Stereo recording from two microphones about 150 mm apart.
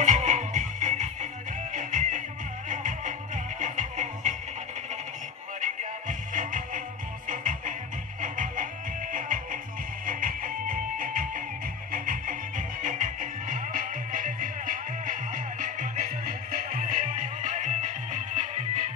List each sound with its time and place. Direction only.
0.0 s music: 55° right (ahead or behind)
5.6 s music: 60° right (ahead or behind)